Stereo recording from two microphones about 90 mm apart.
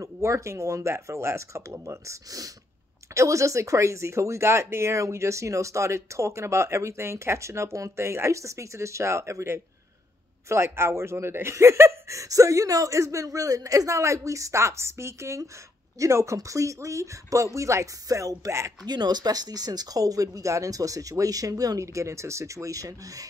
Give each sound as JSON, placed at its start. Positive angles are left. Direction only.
{"t": 0.0, "sound": "speech", "side_deg": -35}
{"t": 18.9, "sound": "speech", "side_deg": -50}